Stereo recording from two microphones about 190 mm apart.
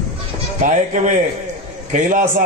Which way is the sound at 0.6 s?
40° right (ahead or behind).